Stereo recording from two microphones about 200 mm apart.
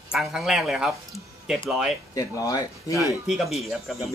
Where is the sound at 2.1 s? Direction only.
15° left (ahead or behind).